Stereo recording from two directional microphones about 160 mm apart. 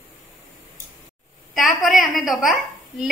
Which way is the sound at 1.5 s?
Centre (ahead or behind).